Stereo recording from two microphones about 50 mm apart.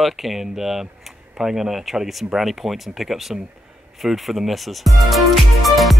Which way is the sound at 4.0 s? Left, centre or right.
Centre.